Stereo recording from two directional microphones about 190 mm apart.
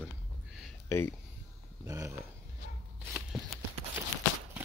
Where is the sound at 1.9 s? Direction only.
15° right (ahead or behind).